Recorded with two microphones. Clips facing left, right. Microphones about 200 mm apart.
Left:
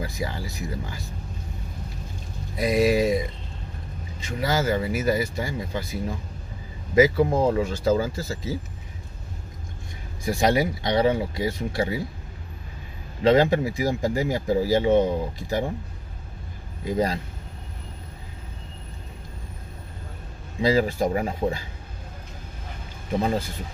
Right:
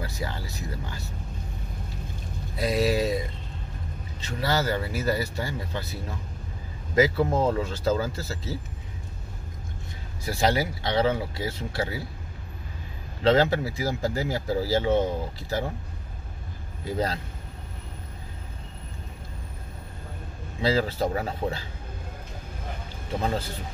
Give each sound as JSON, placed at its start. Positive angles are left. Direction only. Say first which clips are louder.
{"t": 0.0, "sound": "speech", "louder": "left 3 dB", "side_deg": 10}
{"t": 2.5, "sound": "speech", "louder": "left 4 dB", "side_deg": 15}
{"t": 10.2, "sound": "speech", "louder": "left 3 dB", "side_deg": 15}
{"t": 13.2, "sound": "speech", "louder": "left 3 dB", "side_deg": 15}
{"t": 16.8, "sound": "speech", "louder": "left 4 dB", "side_deg": 15}
{"t": 20.6, "sound": "speech", "louder": "left 3 dB", "side_deg": 15}